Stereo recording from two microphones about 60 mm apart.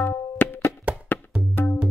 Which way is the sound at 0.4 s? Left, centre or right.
Left.